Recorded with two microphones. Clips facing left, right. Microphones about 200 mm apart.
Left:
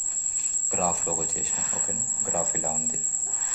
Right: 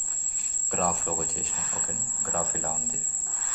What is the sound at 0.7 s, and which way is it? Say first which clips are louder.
Speech: left 1 dB; 5° left (ahead or behind).